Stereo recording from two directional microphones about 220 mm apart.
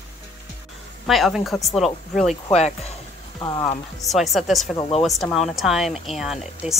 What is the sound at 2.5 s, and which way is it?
Speech, 30° left (ahead or behind).